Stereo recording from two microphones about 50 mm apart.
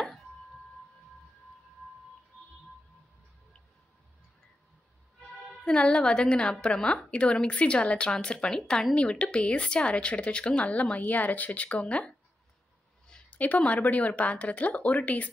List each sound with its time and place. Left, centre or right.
0.0 s a sound: centre
5.6 s speech: left
13.4 s speech: left